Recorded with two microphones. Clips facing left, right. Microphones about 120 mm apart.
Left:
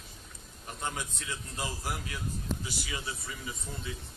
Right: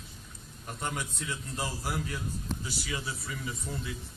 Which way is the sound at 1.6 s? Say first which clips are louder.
Right 1 dB; 10° right (ahead or behind).